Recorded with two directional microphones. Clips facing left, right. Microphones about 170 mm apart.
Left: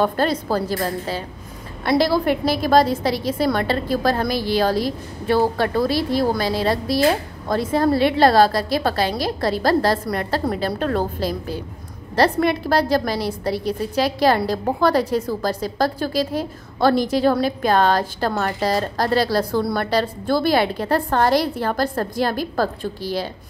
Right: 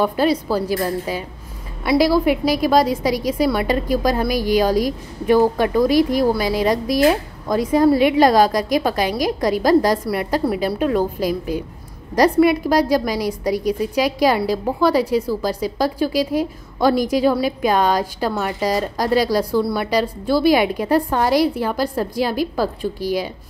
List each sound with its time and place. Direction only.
0.0 s a woman's voice: 10° right (ahead or behind)